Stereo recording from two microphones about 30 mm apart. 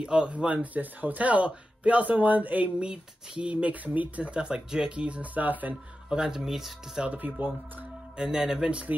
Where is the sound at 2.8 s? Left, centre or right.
Right.